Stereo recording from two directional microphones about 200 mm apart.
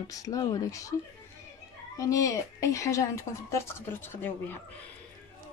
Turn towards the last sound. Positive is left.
turn(degrees=10)  # may be behind; listen again after turning